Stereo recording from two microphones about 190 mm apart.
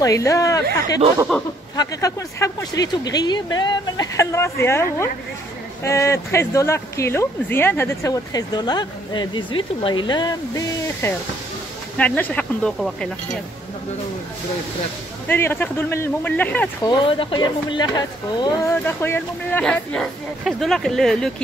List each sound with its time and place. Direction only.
0.0 s speech: 15° left (ahead or behind)
1.8 s speech: 15° left (ahead or behind)
5.9 s speech: 15° left (ahead or behind)
15.2 s speech: 10° left (ahead or behind)
16.8 s speech: 25° left (ahead or behind); by 21.3 s centre (ahead or behind)